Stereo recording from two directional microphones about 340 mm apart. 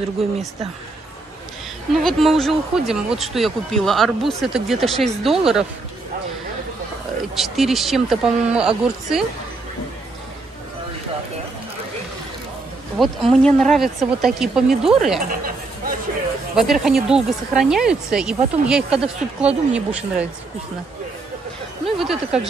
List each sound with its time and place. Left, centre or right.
2.0 s speech: centre
7.3 s speech: centre
12.9 s speech: centre
15.2 s speech: right
16.5 s speech: centre
21.9 s speech: centre